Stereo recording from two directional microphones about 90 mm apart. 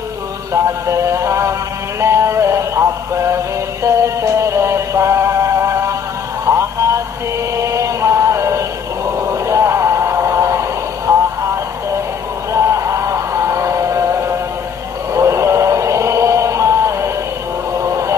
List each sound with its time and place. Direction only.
0.5 s synthetic singing: 35° right (ahead or behind)
2.0 s music: 30° right (ahead or behind)
3.8 s music: 30° right (ahead or behind)
7.6 s chant: 35° right (ahead or behind)
9.5 s a sound: 30° right (ahead or behind)
12.5 s music: 35° right (ahead or behind)
15.1 s a sound: 35° right (ahead or behind)